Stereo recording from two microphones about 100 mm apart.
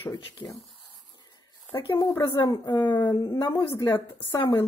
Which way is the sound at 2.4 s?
45° left (ahead or behind).